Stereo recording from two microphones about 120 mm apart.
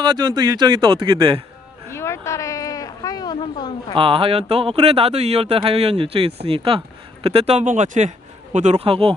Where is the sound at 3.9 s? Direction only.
50° right (ahead or behind); by 8.9 s 75° right (ahead or behind).